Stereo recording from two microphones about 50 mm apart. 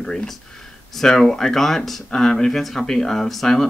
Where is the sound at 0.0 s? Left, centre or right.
Centre.